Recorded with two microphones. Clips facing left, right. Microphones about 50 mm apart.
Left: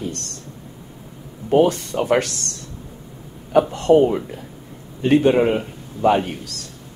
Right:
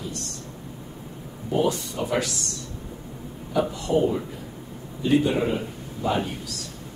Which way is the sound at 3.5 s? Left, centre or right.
Left.